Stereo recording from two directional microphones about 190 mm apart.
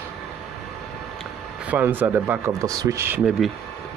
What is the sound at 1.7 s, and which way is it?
Speech, 10° right (ahead or behind).